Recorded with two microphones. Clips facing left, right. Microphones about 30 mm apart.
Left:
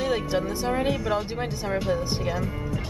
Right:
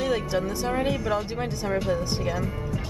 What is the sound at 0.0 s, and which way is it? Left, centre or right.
Speech, centre.